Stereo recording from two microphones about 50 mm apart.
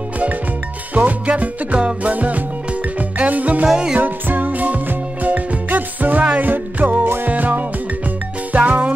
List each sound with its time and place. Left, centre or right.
0.9 s music: right
3.6 s music: centre
4.0 s music: right